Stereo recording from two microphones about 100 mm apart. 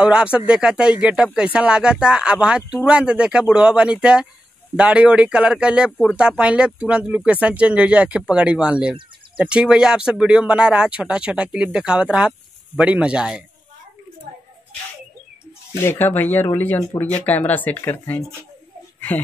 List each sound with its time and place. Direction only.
0.0 s speech: 10° right (ahead or behind)
15.8 s speech: 20° left (ahead or behind)